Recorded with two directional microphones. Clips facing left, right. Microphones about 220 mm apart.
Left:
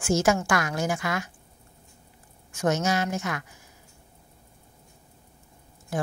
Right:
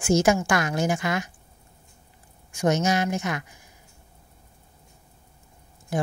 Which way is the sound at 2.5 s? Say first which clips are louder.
Right 2 dB; 15° right (ahead or behind).